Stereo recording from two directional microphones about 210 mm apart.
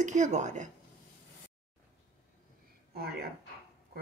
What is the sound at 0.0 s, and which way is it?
Speech, 35° right (ahead or behind).